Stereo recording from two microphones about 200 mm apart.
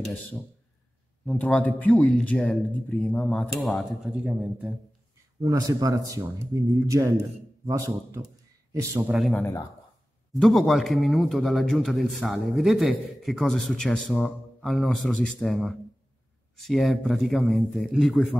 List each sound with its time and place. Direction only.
1.2 s a man's voice: 5° left (ahead or behind)
5.4 s speech: 20° right (ahead or behind)
9.1 s a man's voice: centre (ahead or behind)